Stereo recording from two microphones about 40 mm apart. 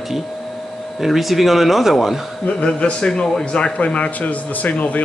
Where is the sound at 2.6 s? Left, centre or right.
Left.